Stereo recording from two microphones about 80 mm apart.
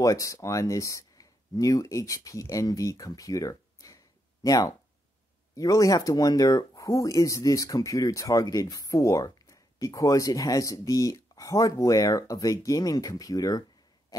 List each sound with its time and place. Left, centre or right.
0.0 s speech: left